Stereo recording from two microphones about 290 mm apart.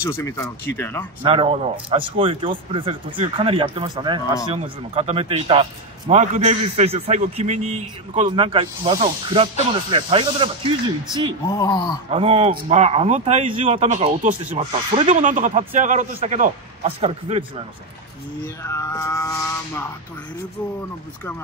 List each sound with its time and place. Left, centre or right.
0.0 s speech: centre
1.2 s a man's voice: centre
11.4 s speech: centre
12.1 s a man's voice: right
18.4 s speech: centre